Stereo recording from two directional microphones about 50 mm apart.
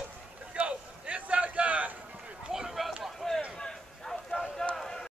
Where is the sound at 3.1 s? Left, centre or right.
Centre.